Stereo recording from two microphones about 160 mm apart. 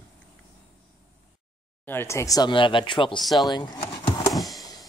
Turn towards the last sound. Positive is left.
turn(degrees=0)  # may be behind; listen again after turning